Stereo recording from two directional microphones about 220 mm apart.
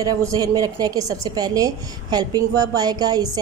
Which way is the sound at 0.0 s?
15° right (ahead or behind).